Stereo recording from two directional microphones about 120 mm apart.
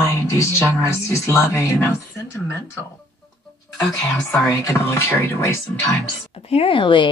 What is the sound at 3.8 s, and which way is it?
Speech, 5° left (ahead or behind).